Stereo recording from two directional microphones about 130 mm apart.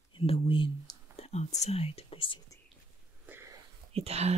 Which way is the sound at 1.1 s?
55° left (ahead or behind).